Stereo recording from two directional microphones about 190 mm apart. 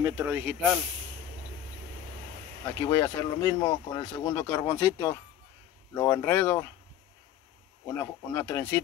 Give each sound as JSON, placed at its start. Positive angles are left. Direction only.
{"t": 0.0, "sound": "speech", "side_deg": -15}
{"t": 2.6, "sound": "speech", "side_deg": 15}
{"t": 8.0, "sound": "speech", "side_deg": 10}